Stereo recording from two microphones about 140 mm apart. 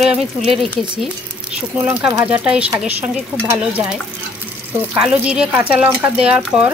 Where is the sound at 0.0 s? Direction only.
Centre (ahead or behind).